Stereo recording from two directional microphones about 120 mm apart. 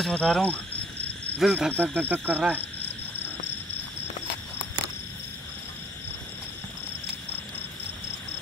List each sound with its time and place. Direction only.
0.0 s speech: 5° left (ahead or behind)
1.4 s speech: 5° right (ahead or behind)
1.7 s speech: 15° right (ahead or behind)